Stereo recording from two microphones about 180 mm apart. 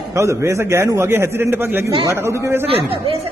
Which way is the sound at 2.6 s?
30° right (ahead or behind).